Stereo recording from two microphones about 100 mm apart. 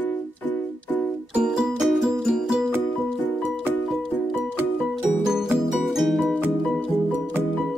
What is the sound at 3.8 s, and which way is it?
Music, centre (ahead or behind).